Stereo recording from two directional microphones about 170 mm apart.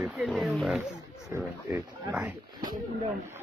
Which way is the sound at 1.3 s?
10° right (ahead or behind).